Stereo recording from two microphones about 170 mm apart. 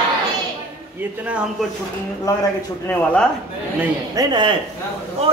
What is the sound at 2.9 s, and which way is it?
Speech, 5° left (ahead or behind).